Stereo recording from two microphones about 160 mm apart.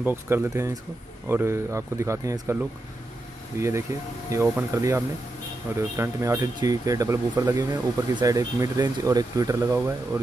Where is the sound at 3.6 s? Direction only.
15° right (ahead or behind).